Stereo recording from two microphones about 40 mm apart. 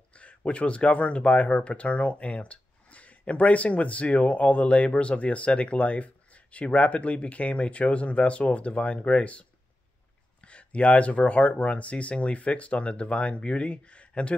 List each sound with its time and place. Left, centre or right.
0.1 s speech: left